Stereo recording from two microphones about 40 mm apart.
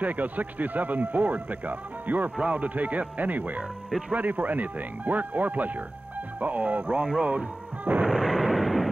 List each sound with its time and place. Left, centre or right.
0.0 s speech: right
8.1 s artillery fire: centre